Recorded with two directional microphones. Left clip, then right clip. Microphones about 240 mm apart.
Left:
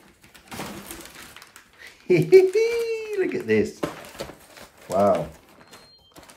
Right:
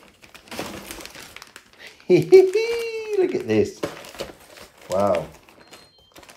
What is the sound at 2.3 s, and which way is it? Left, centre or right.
A child's voice, centre.